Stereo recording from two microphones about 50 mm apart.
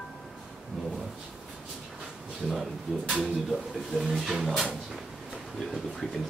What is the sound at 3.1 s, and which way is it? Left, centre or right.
Speech, centre.